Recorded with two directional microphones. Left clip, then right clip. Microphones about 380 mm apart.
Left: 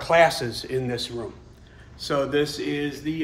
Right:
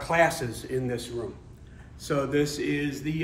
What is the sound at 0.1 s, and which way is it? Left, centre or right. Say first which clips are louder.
A man's voice: left 5 dB; centre.